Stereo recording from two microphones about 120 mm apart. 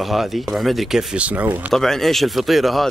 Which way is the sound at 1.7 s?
5° left (ahead or behind).